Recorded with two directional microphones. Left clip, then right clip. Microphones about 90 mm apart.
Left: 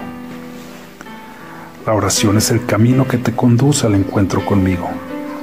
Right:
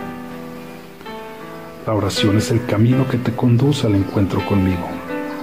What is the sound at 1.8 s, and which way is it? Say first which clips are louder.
Speech: left 4 dB; 90° left.